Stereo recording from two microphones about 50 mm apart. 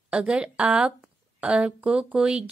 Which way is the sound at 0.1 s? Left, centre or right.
Right.